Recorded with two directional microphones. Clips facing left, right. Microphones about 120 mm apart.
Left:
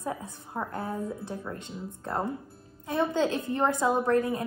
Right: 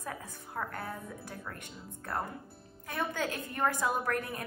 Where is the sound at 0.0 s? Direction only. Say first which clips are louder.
Left 7 dB; 20° left (ahead or behind).